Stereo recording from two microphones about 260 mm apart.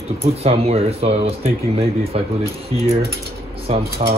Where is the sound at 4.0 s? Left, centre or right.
Right.